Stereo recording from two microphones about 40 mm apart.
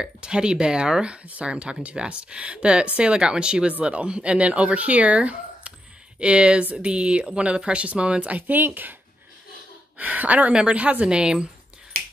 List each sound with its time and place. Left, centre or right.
0.0 s speech: right
9.9 s speech: right
11.1 s speech: right